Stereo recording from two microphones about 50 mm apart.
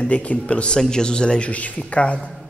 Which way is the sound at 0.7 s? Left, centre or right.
Centre.